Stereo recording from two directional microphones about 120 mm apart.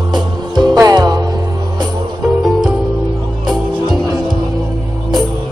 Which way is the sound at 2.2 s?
5° right (ahead or behind).